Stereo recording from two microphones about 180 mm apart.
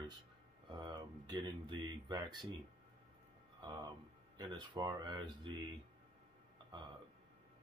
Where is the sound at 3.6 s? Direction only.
25° right (ahead or behind).